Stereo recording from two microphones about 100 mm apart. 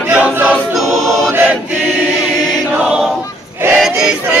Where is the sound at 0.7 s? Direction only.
Centre (ahead or behind).